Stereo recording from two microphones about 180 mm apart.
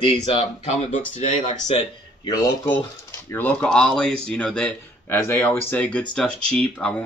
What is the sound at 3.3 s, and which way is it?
Speech, 5° left (ahead or behind).